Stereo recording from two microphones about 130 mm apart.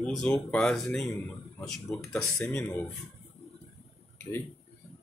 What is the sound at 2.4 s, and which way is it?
Speech, 20° left (ahead or behind).